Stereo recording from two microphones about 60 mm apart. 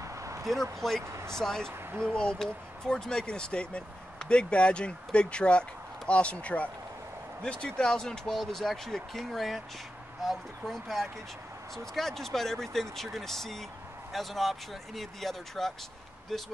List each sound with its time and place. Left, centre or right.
0.0 s vehicle: right
0.7 s speech: centre
1.0 s speech: right
1.3 s speech: centre
1.7 s speech: right
2.0 s speech: centre